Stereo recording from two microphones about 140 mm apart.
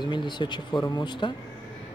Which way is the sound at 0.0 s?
35° left (ahead or behind).